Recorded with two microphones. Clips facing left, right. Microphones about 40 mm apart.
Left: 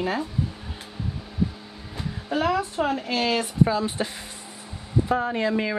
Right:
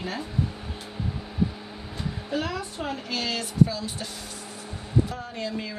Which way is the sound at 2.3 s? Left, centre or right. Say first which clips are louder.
Left 7 dB; centre.